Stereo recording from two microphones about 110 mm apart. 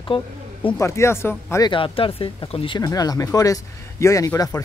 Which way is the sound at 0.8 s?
25° left (ahead or behind).